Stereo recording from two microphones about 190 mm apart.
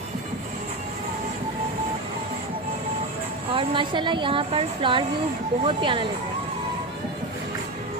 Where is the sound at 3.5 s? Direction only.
30° right (ahead or behind).